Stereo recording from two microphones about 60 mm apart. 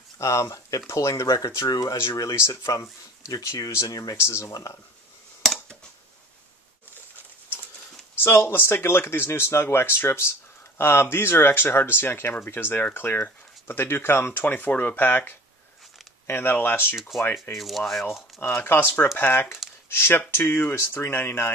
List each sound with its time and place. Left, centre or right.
0.2 s speech: left
2.3 s speech: left
3.7 s speech: left
8.2 s speech: left
17.6 s speech: centre
18.6 s speech: left